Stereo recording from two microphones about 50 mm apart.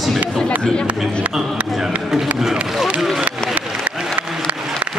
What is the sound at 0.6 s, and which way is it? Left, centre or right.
Speech, centre.